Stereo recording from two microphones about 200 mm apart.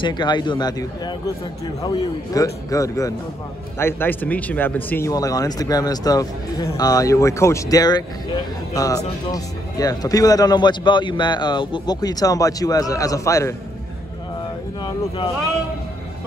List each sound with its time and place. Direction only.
0.0 s speech: 20° left (ahead or behind)